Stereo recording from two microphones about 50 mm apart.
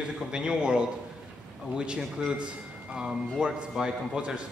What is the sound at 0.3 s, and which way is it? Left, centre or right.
A man's voice, centre.